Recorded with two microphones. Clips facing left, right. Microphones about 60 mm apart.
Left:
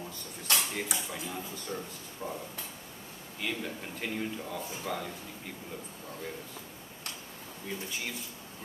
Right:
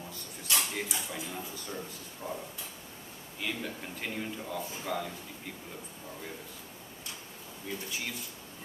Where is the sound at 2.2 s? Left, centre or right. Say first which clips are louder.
Even; left.